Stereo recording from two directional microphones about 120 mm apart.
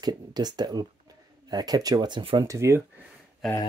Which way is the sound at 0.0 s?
35° right (ahead or behind).